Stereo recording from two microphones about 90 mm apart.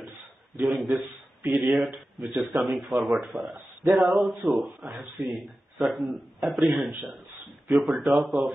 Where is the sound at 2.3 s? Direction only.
20° right (ahead or behind).